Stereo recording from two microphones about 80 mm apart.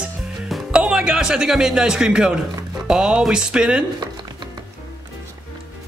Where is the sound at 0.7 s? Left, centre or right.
Centre.